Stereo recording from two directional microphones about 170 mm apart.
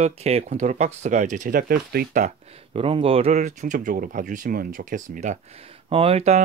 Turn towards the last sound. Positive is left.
turn(degrees=-40)  # may be behind; listen again after turning